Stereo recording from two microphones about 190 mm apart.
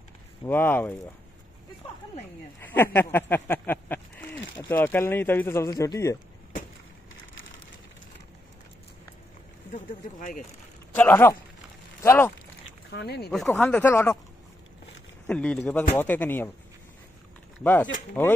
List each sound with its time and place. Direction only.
0.5 s speech: 10° left (ahead or behind)
2.6 s a sound: 10° left (ahead or behind)
4.6 s speech: 10° left (ahead or behind)
9.7 s speech: 40° left (ahead or behind)
11.0 s speech: 10° left (ahead or behind)
12.9 s speech: 60° left (ahead or behind)
13.5 s speech: 10° left (ahead or behind)
15.2 s speech: 5° left (ahead or behind)